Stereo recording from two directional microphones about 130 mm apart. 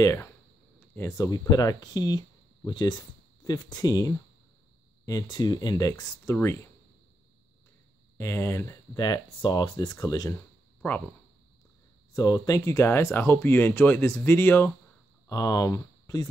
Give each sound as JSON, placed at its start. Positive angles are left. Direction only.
{"t": 0.0, "sound": "speech", "side_deg": 20}
{"t": 8.2, "sound": "speech", "side_deg": 20}
{"t": 10.8, "sound": "speech", "side_deg": 15}
{"t": 12.1, "sound": "speech", "side_deg": 30}
{"t": 15.2, "sound": "speech", "side_deg": 25}